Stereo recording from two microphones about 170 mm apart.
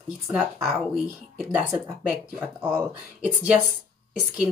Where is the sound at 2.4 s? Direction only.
20° right (ahead or behind).